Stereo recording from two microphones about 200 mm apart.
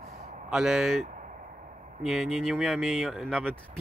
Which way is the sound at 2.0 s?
Centre (ahead or behind).